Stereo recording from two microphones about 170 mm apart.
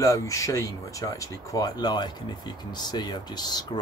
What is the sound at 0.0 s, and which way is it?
Speech, 20° left (ahead or behind).